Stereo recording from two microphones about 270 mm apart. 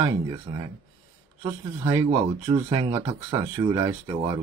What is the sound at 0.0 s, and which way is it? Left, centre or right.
Speech, centre.